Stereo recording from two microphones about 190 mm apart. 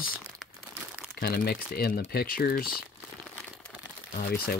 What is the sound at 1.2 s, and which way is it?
Speech, 55° left (ahead or behind).